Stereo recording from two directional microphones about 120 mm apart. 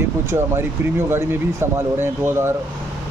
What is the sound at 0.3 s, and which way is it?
Speech, 20° right (ahead or behind).